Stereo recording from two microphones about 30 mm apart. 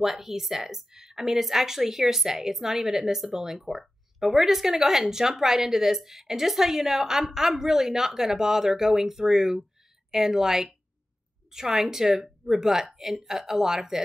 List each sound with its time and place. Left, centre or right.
0.0 s speech: centre